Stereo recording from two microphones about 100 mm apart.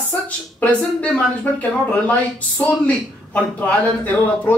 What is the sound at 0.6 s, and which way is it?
Speech, 15° left (ahead or behind).